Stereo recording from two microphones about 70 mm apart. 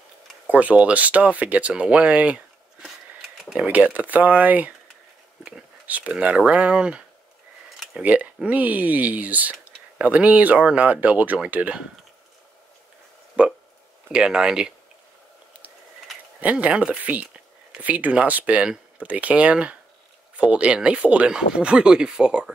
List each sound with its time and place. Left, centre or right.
0.5 s speech: right
3.5 s speech: right
5.9 s speech: right
8.0 s speech: right
13.4 s hiccup: centre
14.1 s speech: centre
16.3 s speech: right